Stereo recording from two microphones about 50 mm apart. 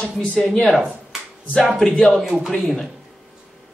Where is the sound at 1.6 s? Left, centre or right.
Centre.